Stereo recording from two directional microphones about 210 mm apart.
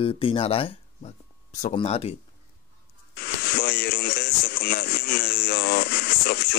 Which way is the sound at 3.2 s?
50° left (ahead or behind).